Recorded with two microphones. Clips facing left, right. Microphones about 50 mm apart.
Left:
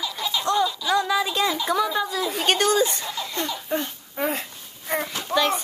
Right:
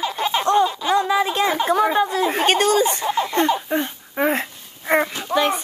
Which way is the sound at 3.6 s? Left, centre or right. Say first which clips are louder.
Right 4 dB; right.